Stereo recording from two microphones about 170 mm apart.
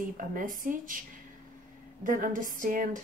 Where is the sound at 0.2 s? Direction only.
55° right (ahead or behind).